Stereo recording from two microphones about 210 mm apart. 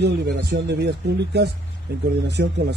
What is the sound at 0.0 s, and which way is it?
Speech, 50° right (ahead or behind).